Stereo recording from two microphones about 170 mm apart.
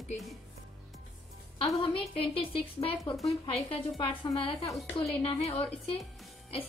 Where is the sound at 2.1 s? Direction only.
30° left (ahead or behind).